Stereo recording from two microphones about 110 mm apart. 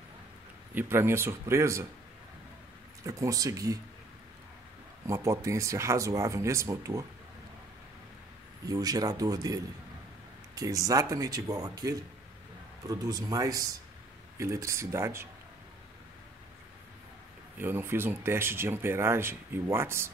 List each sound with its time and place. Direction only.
0.7 s speech: 20° right (ahead or behind)
3.0 s speech: 30° right (ahead or behind)
5.0 s speech: 30° right (ahead or behind)
8.6 s speech: 35° right (ahead or behind)
17.6 s speech: 20° right (ahead or behind)